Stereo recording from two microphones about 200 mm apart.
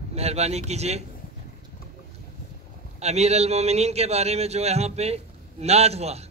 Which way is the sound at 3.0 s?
30° right (ahead or behind).